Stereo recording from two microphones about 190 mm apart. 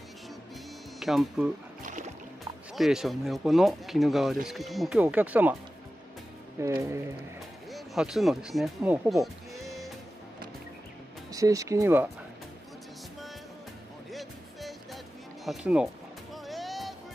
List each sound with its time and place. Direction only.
0.9 s speech: centre (ahead or behind)
1.8 s music: 40° right (ahead or behind)
2.7 s speech: centre (ahead or behind)
6.6 s speech: 15° right (ahead or behind)
7.7 s speech: centre (ahead or behind)
11.3 s speech: 15° right (ahead or behind)
14.1 s music: centre (ahead or behind)
15.4 s speech: 5° right (ahead or behind)
16.4 s a sound: centre (ahead or behind)